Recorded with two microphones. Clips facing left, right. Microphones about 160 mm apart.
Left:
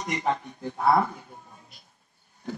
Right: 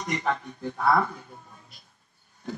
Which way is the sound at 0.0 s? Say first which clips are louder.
Left 1 dB; 20° left (ahead or behind).